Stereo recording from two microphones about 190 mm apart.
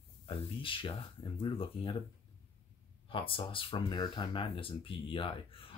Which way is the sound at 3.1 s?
30° left (ahead or behind).